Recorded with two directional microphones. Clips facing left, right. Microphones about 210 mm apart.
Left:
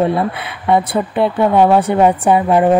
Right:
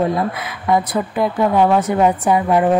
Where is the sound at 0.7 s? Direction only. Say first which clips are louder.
Left 3 dB; 30° left (ahead or behind).